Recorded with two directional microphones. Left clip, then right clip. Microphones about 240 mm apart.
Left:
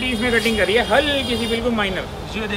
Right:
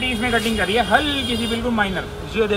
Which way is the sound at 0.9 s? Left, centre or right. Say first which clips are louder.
Left 1 dB; right.